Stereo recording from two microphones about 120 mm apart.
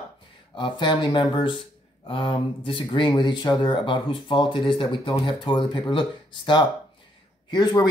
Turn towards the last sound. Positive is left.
turn(degrees=35)  # may be behind; listen again after turning